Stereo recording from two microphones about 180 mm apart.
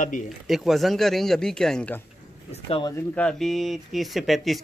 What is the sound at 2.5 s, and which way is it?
Speech, 30° left (ahead or behind).